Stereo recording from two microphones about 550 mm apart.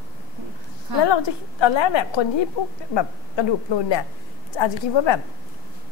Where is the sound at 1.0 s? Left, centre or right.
Left.